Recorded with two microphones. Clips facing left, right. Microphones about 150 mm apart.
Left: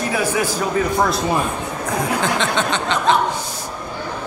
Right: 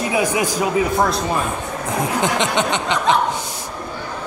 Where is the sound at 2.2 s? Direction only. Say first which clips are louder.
Right 1 dB; 15° right (ahead or behind).